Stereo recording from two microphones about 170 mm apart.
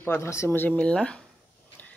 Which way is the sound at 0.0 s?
15° left (ahead or behind).